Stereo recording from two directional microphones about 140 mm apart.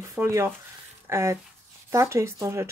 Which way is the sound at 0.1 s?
20° right (ahead or behind).